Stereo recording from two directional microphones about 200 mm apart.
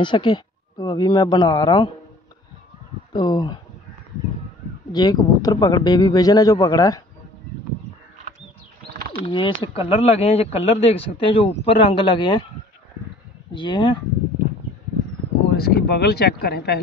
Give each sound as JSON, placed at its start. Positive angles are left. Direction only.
{"t": 0.0, "sound": "speech", "side_deg": 25}
{"t": 3.1, "sound": "speech", "side_deg": 20}
{"t": 4.9, "sound": "speech", "side_deg": 20}
{"t": 9.1, "sound": "speech", "side_deg": 25}
{"t": 13.5, "sound": "speech", "side_deg": 25}
{"t": 15.5, "sound": "speech", "side_deg": 50}